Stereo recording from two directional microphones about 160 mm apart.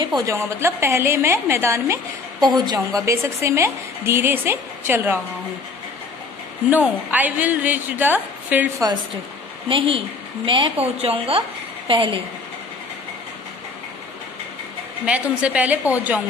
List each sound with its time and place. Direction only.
0.0 s a woman's voice: 25° right (ahead or behind)
2.4 s a woman's voice: 25° right (ahead or behind)
6.7 s a woman's voice: 10° right (ahead or behind)
9.7 s a woman's voice: 35° right (ahead or behind)
15.0 s a woman's voice: 10° right (ahead or behind)